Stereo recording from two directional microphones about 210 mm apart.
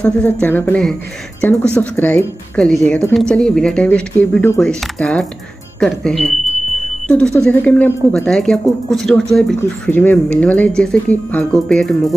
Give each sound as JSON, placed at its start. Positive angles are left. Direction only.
{"t": 0.0, "sound": "a woman's voice", "side_deg": 5}